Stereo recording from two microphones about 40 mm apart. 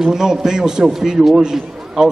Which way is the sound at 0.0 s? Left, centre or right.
Centre.